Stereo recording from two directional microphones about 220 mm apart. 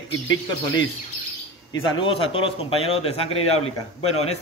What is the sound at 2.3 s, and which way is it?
A man's voice, 25° left (ahead or behind).